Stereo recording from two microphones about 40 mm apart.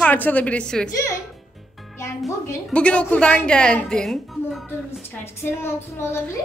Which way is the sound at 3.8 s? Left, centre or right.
Centre.